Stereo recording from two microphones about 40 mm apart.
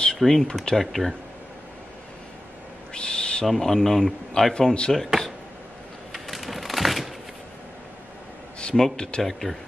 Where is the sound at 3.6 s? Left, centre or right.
Centre.